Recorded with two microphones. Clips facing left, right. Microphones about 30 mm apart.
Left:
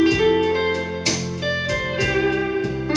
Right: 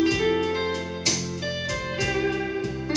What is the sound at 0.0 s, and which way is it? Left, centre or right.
Music, centre.